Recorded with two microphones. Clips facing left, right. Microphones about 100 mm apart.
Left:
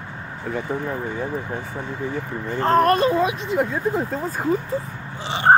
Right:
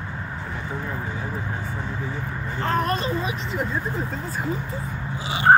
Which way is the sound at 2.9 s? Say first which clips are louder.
Left 7 dB; 60° left (ahead or behind).